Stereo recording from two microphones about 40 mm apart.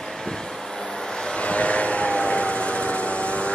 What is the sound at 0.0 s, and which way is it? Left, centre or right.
Vehicle, centre.